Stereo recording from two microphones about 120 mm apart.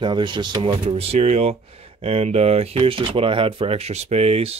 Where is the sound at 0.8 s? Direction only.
55° right (ahead or behind).